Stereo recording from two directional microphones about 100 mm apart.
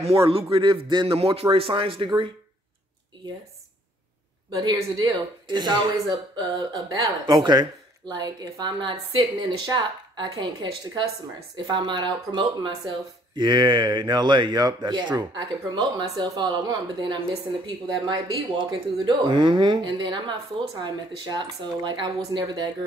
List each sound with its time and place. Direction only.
0.0 s speech: 70° right (ahead or behind); by 1.1 s 55° right (ahead or behind)
1.1 s speech: 75° right (ahead or behind)
4.5 s speech: 40° right (ahead or behind)